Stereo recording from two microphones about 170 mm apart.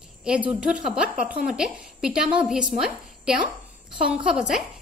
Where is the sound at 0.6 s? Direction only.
5° right (ahead or behind).